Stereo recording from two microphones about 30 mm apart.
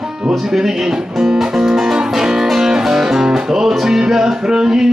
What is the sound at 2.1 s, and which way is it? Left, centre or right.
Music, right.